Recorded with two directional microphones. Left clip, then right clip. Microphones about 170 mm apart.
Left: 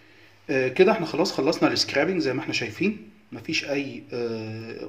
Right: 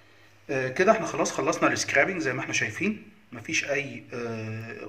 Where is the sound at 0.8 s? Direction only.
70° left (ahead or behind).